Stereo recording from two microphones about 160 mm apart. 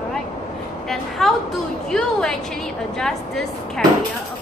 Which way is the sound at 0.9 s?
Centre (ahead or behind).